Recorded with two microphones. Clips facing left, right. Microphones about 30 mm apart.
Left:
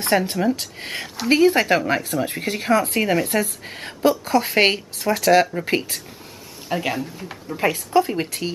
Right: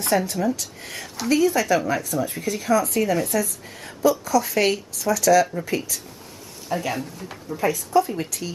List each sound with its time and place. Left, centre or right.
0.0 s a woman's voice: left